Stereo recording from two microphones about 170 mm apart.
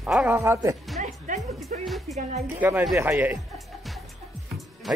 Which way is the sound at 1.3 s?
50° right (ahead or behind).